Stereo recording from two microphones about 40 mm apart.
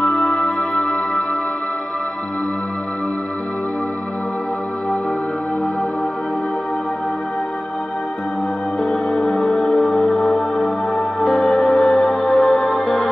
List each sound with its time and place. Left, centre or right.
8.8 s music: left
9.4 s music: centre